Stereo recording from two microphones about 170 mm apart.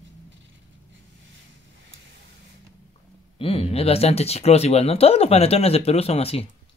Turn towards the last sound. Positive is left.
turn(degrees=35)  # may be behind; listen again after turning